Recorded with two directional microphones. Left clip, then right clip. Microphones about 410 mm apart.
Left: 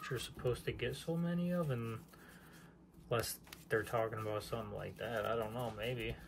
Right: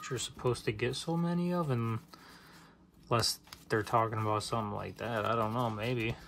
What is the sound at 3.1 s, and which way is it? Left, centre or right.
Speech, centre.